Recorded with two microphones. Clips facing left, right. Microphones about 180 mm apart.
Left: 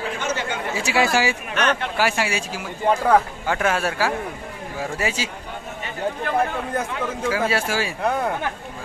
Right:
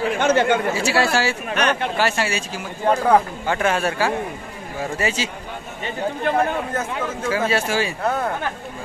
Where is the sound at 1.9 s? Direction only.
10° left (ahead or behind).